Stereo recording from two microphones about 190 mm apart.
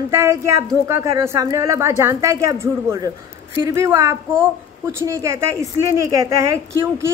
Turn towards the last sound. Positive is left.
turn(degrees=-15)  # may be behind; listen again after turning